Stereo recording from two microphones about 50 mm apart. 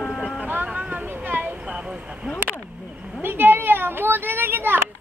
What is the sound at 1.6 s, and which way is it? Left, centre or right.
Vehicle, centre.